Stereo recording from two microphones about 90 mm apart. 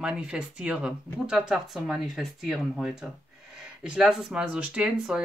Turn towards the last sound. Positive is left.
turn(degrees=-10)  # may be behind; listen again after turning